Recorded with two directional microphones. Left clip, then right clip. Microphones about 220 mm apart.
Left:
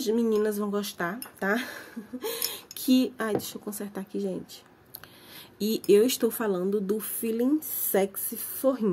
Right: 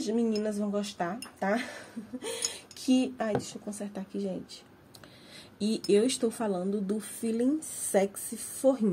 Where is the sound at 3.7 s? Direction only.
45° left (ahead or behind).